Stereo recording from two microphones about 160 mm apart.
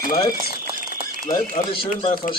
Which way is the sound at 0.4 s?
60° right (ahead or behind).